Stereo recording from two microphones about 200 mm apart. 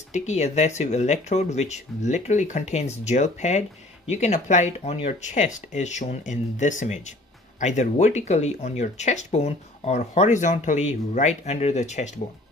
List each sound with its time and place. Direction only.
0.1 s speech: 35° left (ahead or behind)